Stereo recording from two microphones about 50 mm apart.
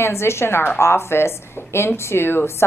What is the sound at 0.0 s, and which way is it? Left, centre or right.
A woman's voice, left.